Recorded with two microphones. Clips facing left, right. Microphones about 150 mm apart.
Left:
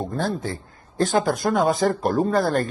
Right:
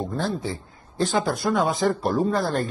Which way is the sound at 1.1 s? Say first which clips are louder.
Left 2 dB; 45° left (ahead or behind).